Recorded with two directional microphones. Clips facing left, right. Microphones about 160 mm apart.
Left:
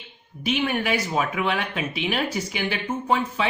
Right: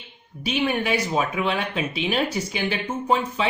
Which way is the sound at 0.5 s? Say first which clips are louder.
Right 1 dB; 25° right (ahead or behind).